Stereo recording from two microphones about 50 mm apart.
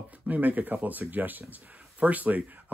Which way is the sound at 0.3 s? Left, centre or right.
Right.